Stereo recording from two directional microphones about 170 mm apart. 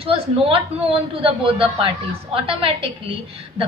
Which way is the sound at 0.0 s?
35° right (ahead or behind).